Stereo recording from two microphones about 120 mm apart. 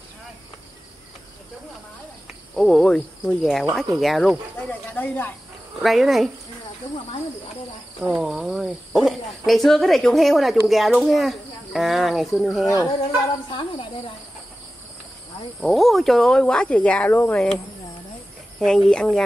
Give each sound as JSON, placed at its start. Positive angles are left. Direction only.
{"t": 2.5, "sound": "speech", "side_deg": 0}
{"t": 4.9, "sound": "speech", "side_deg": 15}
{"t": 5.8, "sound": "speech", "side_deg": 0}
{"t": 8.0, "sound": "speech", "side_deg": -5}
{"t": 13.5, "sound": "speech", "side_deg": 40}
{"t": 15.6, "sound": "speech", "side_deg": 0}
{"t": 18.6, "sound": "speech", "side_deg": 5}